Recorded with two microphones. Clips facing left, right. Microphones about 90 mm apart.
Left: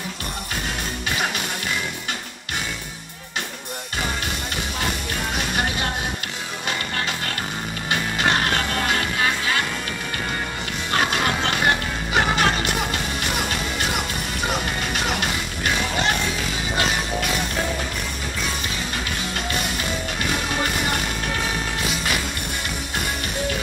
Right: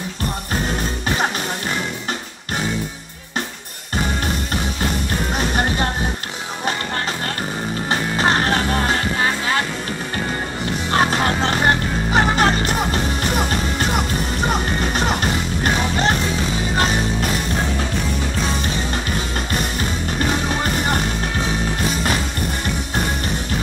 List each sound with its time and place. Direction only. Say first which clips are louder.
5.4 s music: right 6 dB; 40° right (ahead or behind)
7.9 s music: right 3 dB; 35° right (ahead or behind)
10.9 s music: right 4 dB; 35° right (ahead or behind)
21.8 s music: right 5 dB; 40° right (ahead or behind)